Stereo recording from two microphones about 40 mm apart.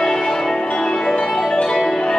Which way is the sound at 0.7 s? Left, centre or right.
Centre.